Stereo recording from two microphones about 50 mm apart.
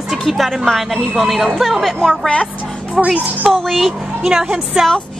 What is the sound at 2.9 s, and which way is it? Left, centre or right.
Speech, centre.